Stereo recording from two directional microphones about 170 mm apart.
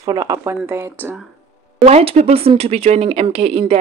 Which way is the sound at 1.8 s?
40° right (ahead or behind).